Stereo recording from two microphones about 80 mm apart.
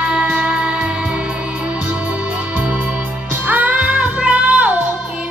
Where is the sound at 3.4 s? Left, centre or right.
Right.